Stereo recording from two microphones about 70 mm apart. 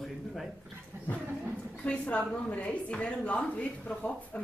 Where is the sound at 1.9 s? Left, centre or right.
Centre.